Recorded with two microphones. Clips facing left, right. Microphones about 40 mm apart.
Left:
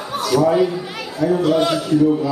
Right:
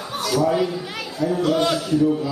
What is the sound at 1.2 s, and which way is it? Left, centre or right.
Speech, centre.